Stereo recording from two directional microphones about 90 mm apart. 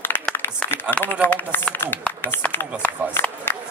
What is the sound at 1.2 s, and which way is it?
Speech, 20° left (ahead or behind).